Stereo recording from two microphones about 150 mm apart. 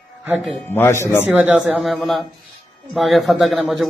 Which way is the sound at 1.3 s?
5° right (ahead or behind).